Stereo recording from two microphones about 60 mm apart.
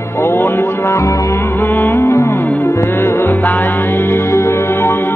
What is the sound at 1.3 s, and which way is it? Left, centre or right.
Music, left.